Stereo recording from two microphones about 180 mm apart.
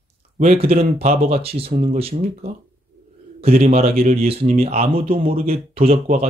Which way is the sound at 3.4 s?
35° right (ahead or behind).